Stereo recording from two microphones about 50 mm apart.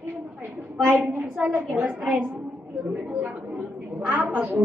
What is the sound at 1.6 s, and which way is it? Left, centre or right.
Speech, right.